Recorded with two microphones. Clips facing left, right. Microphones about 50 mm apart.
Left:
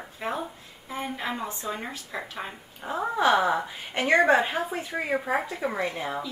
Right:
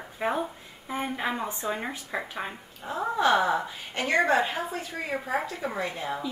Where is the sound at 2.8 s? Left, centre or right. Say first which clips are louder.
Left 1 dB; centre.